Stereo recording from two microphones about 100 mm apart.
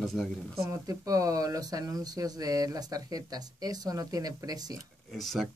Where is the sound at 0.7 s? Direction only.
35° right (ahead or behind).